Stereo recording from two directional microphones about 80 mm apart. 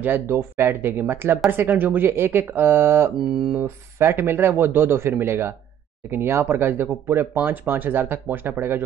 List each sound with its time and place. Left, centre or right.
0.0 s speech: right
3.3 s speech: centre
3.6 s speech: right